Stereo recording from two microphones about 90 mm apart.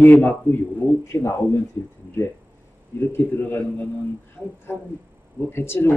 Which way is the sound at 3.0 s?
25° left (ahead or behind).